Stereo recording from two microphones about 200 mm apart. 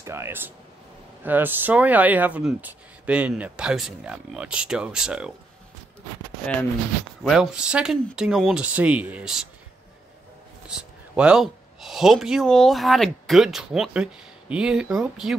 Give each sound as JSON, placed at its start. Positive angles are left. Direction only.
{"t": 0.0, "sound": "speech", "side_deg": -15}
{"t": 7.2, "sound": "speech", "side_deg": -5}
{"t": 10.7, "sound": "speech", "side_deg": -5}